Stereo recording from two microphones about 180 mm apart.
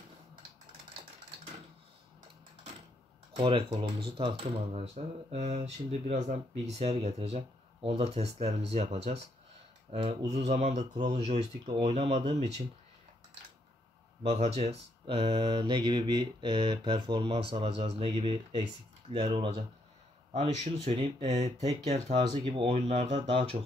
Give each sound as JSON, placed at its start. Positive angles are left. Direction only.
{"t": 3.3, "sound": "speech", "side_deg": -30}
{"t": 10.8, "sound": "speech", "side_deg": -25}
{"t": 11.1, "sound": "speech", "side_deg": -35}
{"t": 14.2, "sound": "speech", "side_deg": -35}
{"t": 22.0, "sound": "speech", "side_deg": -25}